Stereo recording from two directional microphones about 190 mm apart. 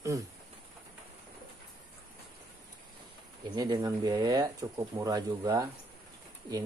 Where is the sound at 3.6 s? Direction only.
20° right (ahead or behind).